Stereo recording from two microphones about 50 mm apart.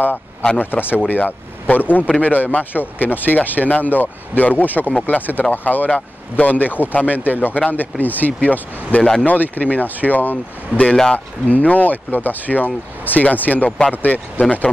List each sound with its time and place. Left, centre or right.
0.6 s speech: left
13.7 s speech: centre
14.0 s speech: left